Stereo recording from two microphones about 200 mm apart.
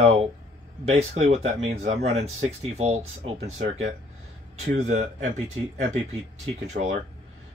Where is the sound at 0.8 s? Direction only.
30° right (ahead or behind).